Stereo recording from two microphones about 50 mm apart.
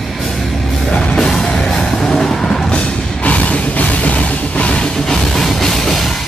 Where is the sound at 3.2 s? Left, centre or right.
Left.